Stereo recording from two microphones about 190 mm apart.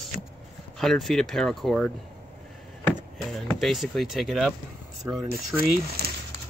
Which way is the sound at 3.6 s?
Centre (ahead or behind).